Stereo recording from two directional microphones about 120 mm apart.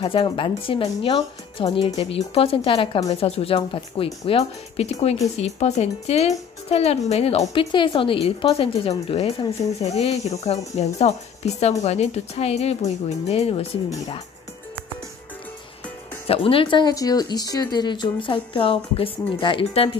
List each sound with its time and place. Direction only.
0.0 s a woman's voice: 45° left (ahead or behind)
7.5 s a woman's voice: 45° left (ahead or behind)
16.3 s a woman's voice: 50° left (ahead or behind)
16.8 s a woman's voice: 30° left (ahead or behind); by 20.0 s 50° left (ahead or behind)